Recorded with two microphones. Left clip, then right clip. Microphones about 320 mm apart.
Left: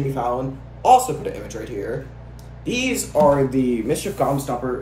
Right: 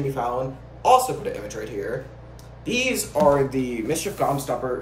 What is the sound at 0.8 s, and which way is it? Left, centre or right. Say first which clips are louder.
Speech: left 3 dB; centre.